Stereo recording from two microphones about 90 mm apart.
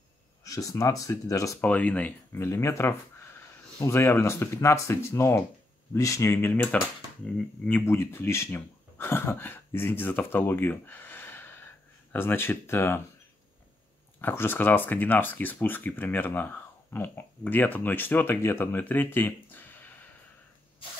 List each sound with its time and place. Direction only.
0.4 s speech: 40° left (ahead or behind)
1.6 s speech: 15° left (ahead or behind)
2.3 s speech: 30° left (ahead or behind)
7.8 s speech: 30° left (ahead or behind)
14.2 s speech: 25° left (ahead or behind)